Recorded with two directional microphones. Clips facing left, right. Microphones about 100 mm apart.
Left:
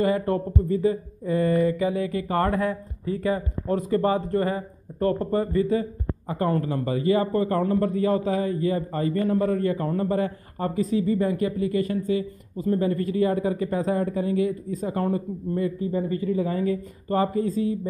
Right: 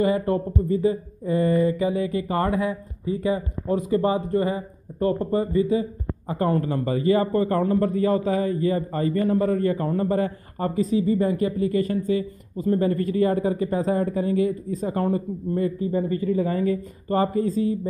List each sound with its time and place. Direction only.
0.0 s speech: 20° right (ahead or behind)
2.2 s speech: 10° right (ahead or behind)
6.3 s speech: 30° right (ahead or behind)
10.9 s speech: 25° right (ahead or behind)